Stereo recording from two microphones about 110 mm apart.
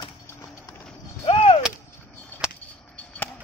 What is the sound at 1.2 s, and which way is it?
Artillery fire, 60° left (ahead or behind).